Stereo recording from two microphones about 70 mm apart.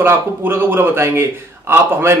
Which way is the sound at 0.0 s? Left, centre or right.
Right.